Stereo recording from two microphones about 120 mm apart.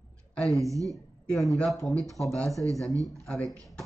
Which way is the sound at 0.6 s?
25° right (ahead or behind).